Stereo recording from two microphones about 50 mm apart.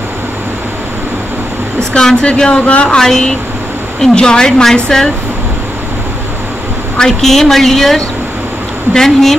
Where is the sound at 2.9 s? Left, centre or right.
Centre.